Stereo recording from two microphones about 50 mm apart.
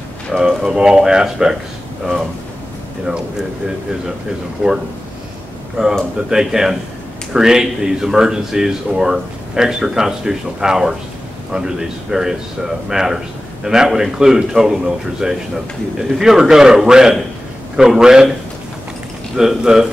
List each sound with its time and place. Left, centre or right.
0.4 s speech: centre
4.6 s speech: centre
6.3 s speech: centre
19.3 s speech: centre